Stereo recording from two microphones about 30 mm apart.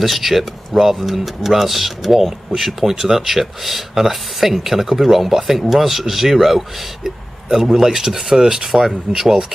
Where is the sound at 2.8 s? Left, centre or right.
Centre.